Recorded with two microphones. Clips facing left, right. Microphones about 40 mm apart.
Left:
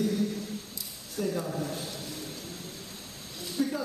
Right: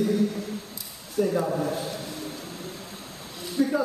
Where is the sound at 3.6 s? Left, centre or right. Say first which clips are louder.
Right 5 dB; centre.